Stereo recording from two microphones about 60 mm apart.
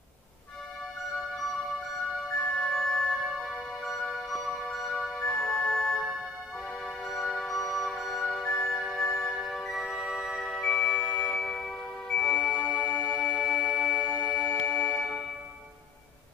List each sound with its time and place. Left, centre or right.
2.7 s music: centre
7.1 s music: centre
10.6 s music: centre
11.3 s tubular bells: centre
12.1 s music: centre
13.6 s music: centre
14.0 s music: centre